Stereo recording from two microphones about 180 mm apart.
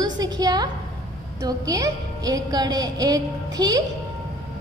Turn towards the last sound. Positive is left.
turn(degrees=-20)  # may be behind; listen again after turning